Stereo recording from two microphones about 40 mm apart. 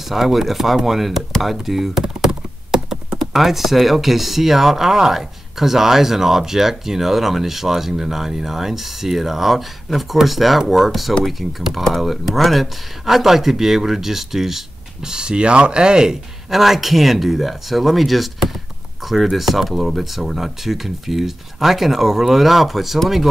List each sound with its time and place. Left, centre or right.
0.1 s speech: centre
1.4 s computer keyboard: centre
3.3 s speech: centre
15.0 s speech: right
16.4 s speech: centre
19.3 s speech: centre